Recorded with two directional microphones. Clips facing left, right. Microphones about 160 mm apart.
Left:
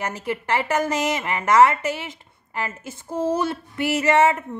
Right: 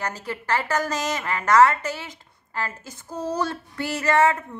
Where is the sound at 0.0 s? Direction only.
20° left (ahead or behind).